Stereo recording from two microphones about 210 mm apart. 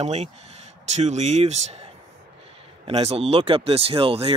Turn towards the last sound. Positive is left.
turn(degrees=-25)  # may be behind; listen again after turning